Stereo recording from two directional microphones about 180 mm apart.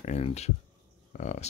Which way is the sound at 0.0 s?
35° left (ahead or behind).